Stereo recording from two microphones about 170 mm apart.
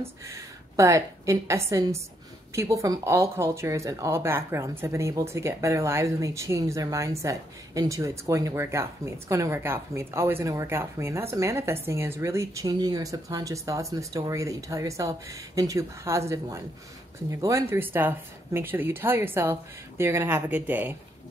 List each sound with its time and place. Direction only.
0.0 s a woman's voice: 20° right (ahead or behind)